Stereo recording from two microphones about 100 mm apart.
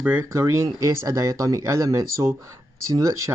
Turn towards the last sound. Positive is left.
turn(degrees=-30)  # may be behind; listen again after turning